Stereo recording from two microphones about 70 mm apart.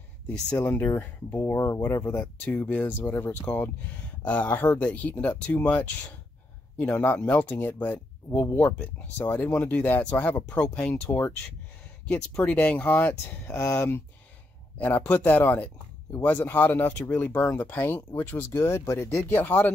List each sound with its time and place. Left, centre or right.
0.6 s speech: left
1.9 s a man's voice: left
14.8 s a man's voice: left